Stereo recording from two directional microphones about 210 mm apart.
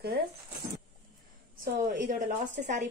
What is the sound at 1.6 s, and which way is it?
A woman's voice, 40° right (ahead or behind).